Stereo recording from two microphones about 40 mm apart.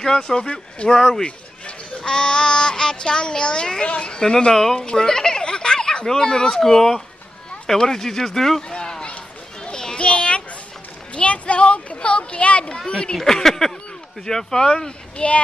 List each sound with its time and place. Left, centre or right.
0.0 s speech: centre
4.2 s speech: centre
8.6 s a sound: left
9.7 s children playing: left
11.1 s a sound: left
12.7 s speech: left
13.2 s speech: centre